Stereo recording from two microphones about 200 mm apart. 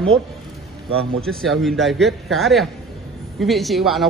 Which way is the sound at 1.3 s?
Centre (ahead or behind).